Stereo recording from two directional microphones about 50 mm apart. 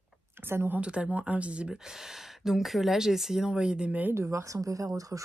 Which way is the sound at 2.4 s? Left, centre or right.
Centre.